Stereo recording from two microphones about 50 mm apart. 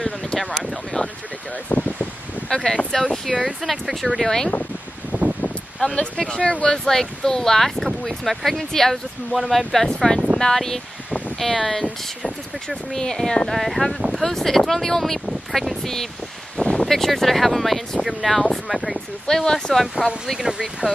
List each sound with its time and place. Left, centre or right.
0.0 s a sound: centre
1.0 s vehicle: centre
1.7 s a sound: left
2.5 s speech: centre
5.1 s a sound: right
5.9 s speech: centre
6.7 s speech: centre
13.5 s speech: centre
15.5 s speech: centre
15.8 s speech: centre
16.5 s a sound: centre
16.8 s speech: centre
20.3 s speech: centre